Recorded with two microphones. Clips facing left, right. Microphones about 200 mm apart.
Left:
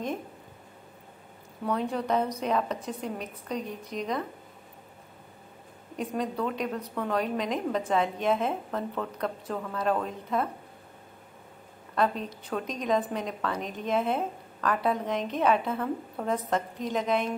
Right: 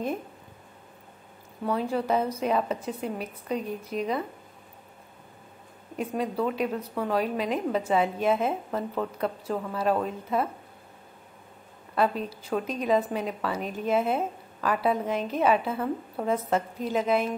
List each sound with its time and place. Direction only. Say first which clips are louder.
1.6 s a woman's voice: right 2 dB; centre (ahead or behind)
5.9 s a woman's voice: right 2 dB; 5° right (ahead or behind)
11.9 s a woman's voice: right 2 dB; 5° right (ahead or behind)